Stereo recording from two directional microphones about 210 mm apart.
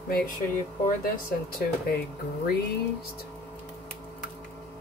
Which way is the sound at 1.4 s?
50° left (ahead or behind).